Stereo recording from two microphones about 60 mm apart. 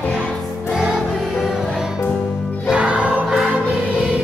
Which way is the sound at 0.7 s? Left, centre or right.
Centre.